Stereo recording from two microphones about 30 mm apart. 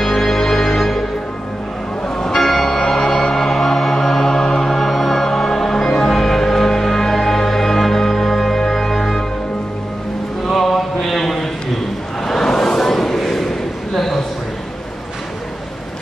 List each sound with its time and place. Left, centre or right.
0.0 s music: centre
2.1 s music: left
4.6 s music: centre
10.4 s mantra: centre
12.3 s a sound: centre